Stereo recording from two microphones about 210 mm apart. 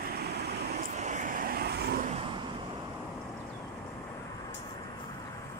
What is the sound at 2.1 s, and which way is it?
Vehicle, 25° right (ahead or behind).